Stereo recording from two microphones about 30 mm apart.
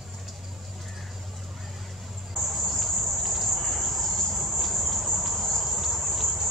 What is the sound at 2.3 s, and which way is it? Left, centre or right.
Cricket, centre.